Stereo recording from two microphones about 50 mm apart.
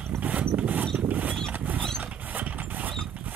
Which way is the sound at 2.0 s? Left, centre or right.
Right.